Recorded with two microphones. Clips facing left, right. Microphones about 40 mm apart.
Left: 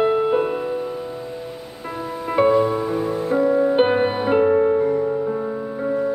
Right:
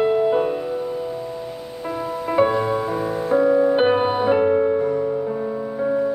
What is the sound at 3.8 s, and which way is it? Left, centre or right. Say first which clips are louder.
Music: even; centre.